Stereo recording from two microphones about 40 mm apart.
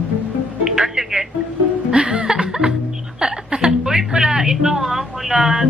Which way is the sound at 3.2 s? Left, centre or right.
Centre.